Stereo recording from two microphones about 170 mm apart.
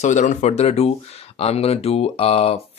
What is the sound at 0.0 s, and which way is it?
Speech, 45° left (ahead or behind).